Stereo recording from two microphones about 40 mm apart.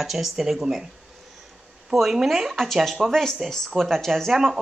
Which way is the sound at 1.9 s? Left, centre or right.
Centre.